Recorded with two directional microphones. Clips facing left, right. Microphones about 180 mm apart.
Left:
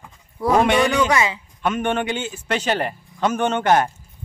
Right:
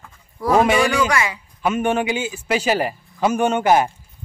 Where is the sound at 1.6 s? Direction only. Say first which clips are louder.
Right 2 dB; 5° right (ahead or behind).